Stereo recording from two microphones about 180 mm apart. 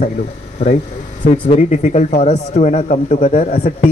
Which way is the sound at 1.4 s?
40° left (ahead or behind).